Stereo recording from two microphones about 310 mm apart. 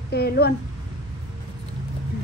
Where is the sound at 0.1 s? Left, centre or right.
Left.